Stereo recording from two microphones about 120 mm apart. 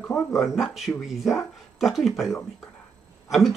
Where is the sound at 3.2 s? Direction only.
Centre (ahead or behind).